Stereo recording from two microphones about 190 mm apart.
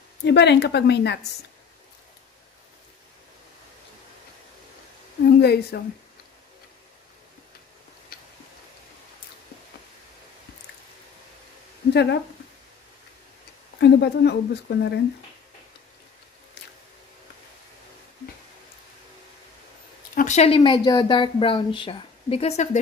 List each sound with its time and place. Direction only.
0.2 s speech: 65° left (ahead or behind)
5.4 s speech: 60° left (ahead or behind)
11.9 s speech: 65° left (ahead or behind)
13.7 s speech: 65° left (ahead or behind)
20.2 s speech: 35° left (ahead or behind)